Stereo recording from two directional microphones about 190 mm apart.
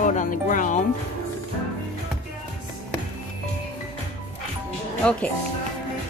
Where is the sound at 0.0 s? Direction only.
40° left (ahead or behind).